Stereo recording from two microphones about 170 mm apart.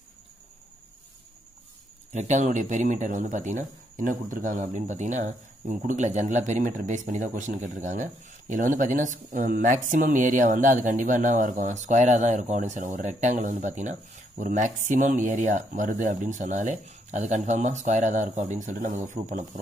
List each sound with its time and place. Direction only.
2.1 s speech: 45° right (ahead or behind)